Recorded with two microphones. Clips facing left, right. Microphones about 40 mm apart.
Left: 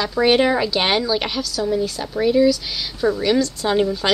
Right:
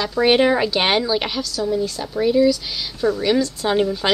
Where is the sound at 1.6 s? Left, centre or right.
Centre.